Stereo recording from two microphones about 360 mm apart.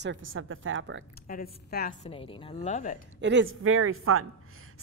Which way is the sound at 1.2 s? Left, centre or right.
Left.